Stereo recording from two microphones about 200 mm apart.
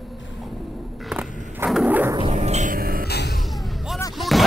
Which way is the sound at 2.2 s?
35° right (ahead or behind).